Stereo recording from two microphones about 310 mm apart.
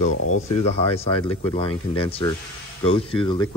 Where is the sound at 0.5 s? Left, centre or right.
Centre.